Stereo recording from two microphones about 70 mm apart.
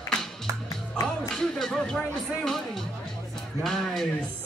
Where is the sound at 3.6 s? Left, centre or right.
Centre.